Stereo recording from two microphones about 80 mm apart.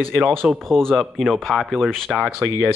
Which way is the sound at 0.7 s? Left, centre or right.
Centre.